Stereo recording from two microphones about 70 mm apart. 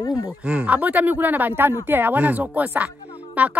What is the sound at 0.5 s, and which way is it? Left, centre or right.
Speech, right.